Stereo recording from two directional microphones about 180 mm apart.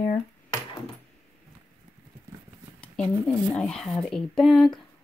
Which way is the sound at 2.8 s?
5° left (ahead or behind).